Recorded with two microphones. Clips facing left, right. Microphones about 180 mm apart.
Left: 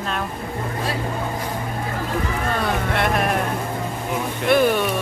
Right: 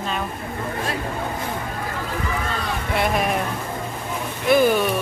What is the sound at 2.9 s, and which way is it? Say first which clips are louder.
Speech: right 3 dB; centre (ahead or behind).